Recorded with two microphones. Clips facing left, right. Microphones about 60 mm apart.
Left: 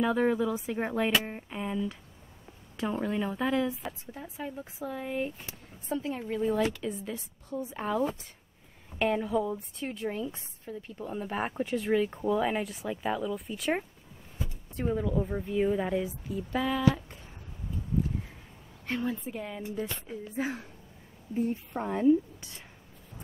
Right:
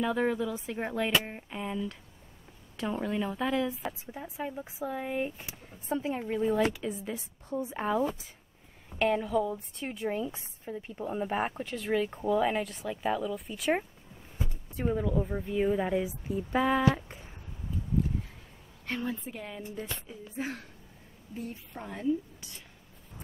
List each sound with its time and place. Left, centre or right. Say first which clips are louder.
0.0 s speech: left 2 dB; centre
4.1 s speech: right 2 dB; centre
8.0 s speech: even; centre
11.6 s speech: left 3 dB; centre
16.3 s speech: right 5 dB; right
18.9 s speech: left 2 dB; centre
20.3 s speech: left 3 dB; centre
21.4 s a woman's voice: left 9 dB; left